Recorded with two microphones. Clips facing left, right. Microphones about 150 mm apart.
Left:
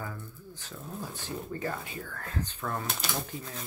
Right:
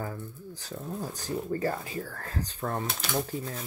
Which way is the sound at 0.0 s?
35° right (ahead or behind).